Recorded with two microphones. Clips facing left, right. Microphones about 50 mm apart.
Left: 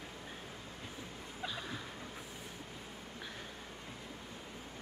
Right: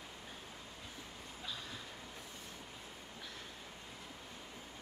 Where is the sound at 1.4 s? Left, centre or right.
Left.